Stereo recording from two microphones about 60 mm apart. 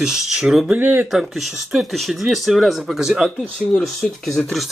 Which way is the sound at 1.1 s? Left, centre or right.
Centre.